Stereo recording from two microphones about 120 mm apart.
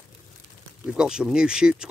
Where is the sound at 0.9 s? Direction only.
5° right (ahead or behind).